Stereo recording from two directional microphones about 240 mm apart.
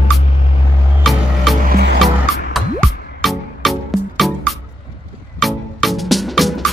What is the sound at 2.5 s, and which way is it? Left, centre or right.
Music, centre.